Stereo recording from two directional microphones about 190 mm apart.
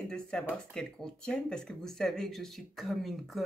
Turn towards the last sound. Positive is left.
turn(degrees=0)  # may be behind; listen again after turning